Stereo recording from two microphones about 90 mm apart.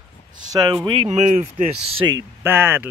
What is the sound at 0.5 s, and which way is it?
Speech, 50° right (ahead or behind).